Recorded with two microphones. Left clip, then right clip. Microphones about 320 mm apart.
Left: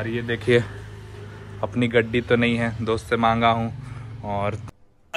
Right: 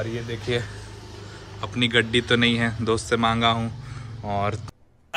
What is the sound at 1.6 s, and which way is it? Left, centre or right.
Speech, centre.